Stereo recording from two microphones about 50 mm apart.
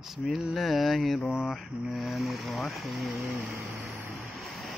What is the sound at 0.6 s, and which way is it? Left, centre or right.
Speech, centre.